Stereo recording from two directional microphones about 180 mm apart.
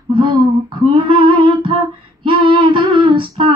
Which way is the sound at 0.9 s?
30° right (ahead or behind).